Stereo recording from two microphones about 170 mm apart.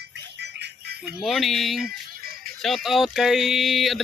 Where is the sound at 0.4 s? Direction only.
80° right.